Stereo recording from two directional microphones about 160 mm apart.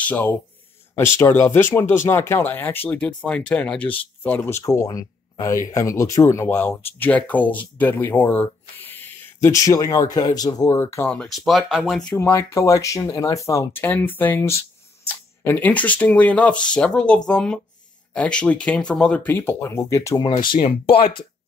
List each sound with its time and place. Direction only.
0.0 s speech: 10° left (ahead or behind)
12.2 s speech: 15° left (ahead or behind)
21.0 s speech: 70° left (ahead or behind)